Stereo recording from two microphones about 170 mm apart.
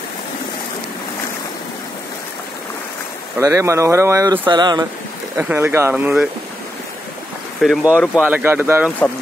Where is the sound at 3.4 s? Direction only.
15° right (ahead or behind).